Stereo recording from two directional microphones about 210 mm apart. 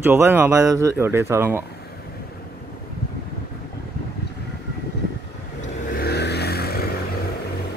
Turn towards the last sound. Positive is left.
turn(degrees=50)  # may be behind; listen again after turning